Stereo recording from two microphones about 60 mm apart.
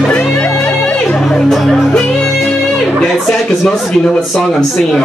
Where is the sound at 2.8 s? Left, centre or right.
Centre.